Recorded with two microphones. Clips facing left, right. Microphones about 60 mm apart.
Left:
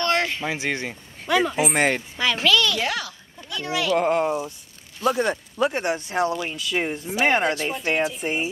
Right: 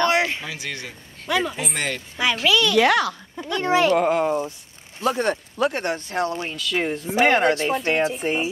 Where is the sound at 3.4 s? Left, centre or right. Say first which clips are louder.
Right 7 dB; right.